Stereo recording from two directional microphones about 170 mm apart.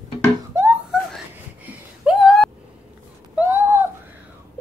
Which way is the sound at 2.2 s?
5° left (ahead or behind).